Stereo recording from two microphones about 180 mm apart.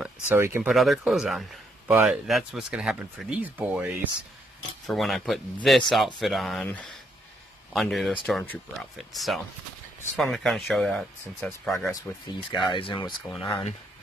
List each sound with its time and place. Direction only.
0.0 s speech: 10° right (ahead or behind)
11.9 s speech: 25° left (ahead or behind)